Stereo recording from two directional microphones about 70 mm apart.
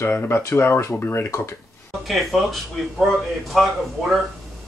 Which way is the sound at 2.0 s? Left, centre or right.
Centre.